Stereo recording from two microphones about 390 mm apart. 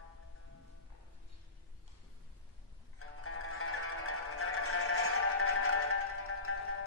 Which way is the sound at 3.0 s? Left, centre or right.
Left.